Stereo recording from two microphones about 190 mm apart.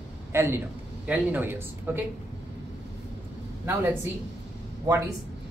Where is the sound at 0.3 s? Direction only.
15° right (ahead or behind).